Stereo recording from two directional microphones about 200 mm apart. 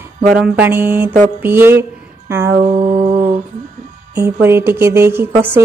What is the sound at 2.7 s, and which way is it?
Music, 35° right (ahead or behind).